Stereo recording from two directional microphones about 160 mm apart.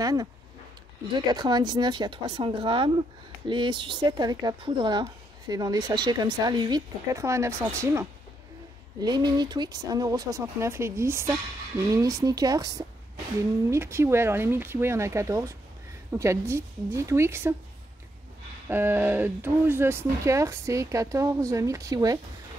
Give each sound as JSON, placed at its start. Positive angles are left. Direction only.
{"t": 0.0, "sound": "speech", "side_deg": -25}
{"t": 18.7, "sound": "speech", "side_deg": -15}